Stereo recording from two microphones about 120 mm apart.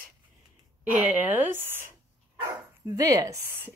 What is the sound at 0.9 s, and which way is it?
Speech, 15° right (ahead or behind).